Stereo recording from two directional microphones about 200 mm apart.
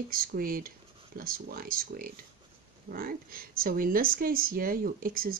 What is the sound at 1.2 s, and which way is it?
Speech, 45° right (ahead or behind).